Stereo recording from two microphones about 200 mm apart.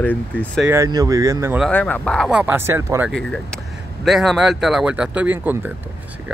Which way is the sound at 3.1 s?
5° left (ahead or behind).